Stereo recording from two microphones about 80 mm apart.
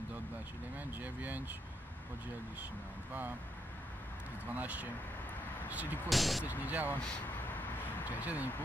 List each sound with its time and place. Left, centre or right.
1.0 s speech: right
4.6 s speech: centre
6.0 s speech: centre
6.4 s speech: right
8.1 s speech: centre